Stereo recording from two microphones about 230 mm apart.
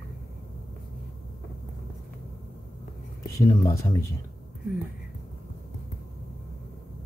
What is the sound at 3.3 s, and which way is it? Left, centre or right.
Speech, centre.